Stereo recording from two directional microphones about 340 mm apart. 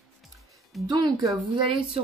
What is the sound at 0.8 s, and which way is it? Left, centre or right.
Speech, centre.